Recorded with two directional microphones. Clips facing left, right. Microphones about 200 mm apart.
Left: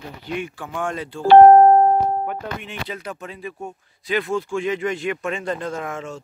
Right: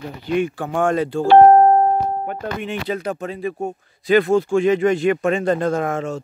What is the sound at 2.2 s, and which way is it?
Speech, 40° right (ahead or behind).